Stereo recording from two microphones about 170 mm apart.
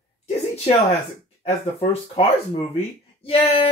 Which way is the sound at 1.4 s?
35° left (ahead or behind).